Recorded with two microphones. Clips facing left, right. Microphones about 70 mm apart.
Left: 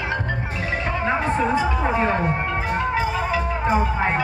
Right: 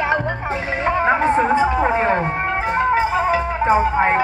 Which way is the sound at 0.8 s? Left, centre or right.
Right.